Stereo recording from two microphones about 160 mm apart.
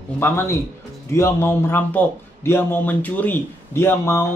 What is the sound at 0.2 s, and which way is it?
A man's voice, 15° left (ahead or behind).